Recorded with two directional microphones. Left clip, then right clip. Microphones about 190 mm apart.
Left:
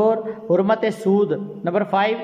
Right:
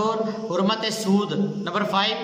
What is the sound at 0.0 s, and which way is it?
A man's voice, 35° left (ahead or behind).